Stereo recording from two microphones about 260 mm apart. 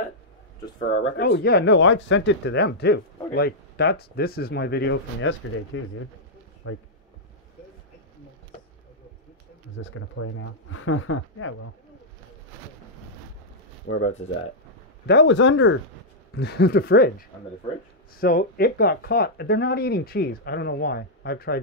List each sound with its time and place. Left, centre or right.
0.8 s speech: left
9.8 s speech: left
13.9 s speech: left
15.0 s speech: left
18.2 s speech: left